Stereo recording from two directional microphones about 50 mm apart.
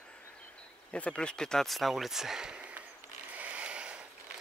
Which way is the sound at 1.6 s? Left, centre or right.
Centre.